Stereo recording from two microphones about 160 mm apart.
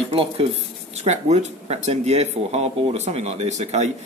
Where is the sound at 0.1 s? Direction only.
35° right (ahead or behind).